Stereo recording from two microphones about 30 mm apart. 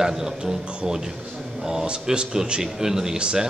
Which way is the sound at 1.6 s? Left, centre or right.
Right.